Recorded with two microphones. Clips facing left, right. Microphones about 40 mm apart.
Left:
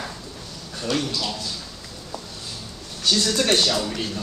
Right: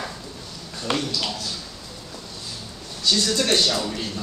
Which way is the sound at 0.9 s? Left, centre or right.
Right.